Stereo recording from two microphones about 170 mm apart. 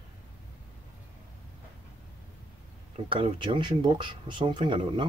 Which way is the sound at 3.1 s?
30° right (ahead or behind).